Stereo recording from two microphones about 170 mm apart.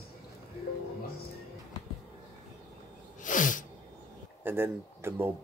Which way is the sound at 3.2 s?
50° left (ahead or behind).